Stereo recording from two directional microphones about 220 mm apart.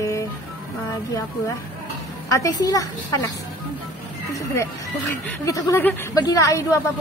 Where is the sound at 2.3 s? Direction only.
15° left (ahead or behind).